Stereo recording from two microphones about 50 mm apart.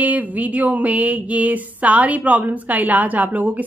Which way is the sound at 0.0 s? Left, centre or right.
Right.